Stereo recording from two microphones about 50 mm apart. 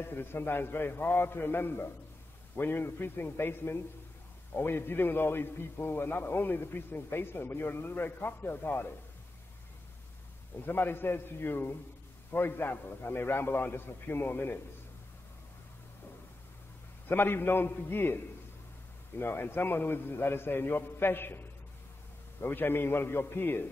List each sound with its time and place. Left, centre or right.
0.0 s a man's voice: left
10.6 s a man's voice: left
17.1 s a man's voice: left
19.1 s a man's voice: left